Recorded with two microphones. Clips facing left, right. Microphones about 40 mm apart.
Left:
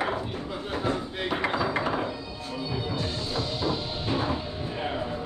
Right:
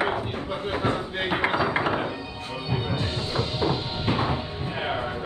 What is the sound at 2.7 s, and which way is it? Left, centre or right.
Music, right.